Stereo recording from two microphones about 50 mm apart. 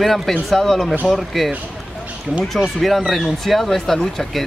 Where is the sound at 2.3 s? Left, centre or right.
Centre.